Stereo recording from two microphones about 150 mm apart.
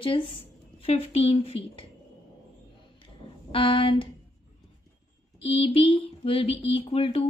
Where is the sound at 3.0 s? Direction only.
35° left (ahead or behind).